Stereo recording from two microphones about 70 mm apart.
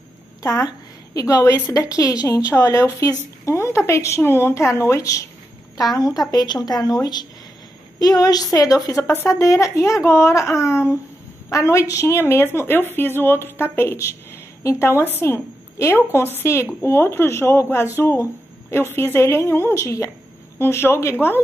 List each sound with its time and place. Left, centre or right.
0.4 s a woman's voice: left
2.5 s speech: left
5.9 s a woman's voice: left
6.3 s a woman's voice: left